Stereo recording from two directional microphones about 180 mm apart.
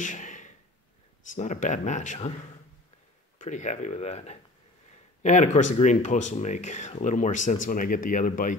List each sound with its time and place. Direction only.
0.0 s a sound: 45° left (ahead or behind)
1.3 s speech: 45° left (ahead or behind)
3.3 s speech: 45° left (ahead or behind)